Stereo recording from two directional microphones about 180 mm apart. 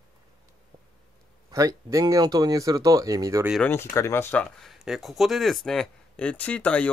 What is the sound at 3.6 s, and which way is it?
Speech, 10° left (ahead or behind).